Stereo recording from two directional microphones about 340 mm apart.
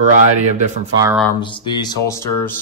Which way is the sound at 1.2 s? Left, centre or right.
Centre.